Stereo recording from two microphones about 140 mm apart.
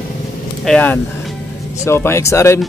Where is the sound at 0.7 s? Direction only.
10° left (ahead or behind).